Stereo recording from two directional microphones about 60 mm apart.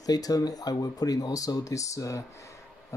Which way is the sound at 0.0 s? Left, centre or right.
Left.